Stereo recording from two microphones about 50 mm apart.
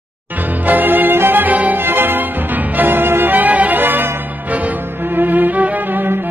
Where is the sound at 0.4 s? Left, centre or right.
Right.